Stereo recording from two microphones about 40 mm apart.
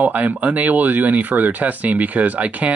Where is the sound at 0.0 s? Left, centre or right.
Right.